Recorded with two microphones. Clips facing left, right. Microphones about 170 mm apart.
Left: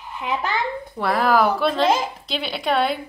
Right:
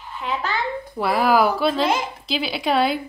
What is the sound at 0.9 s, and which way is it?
A woman's voice, 5° right (ahead or behind).